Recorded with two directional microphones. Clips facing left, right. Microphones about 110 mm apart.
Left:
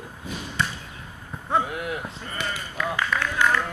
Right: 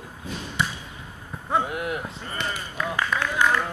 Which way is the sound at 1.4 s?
Centre (ahead or behind).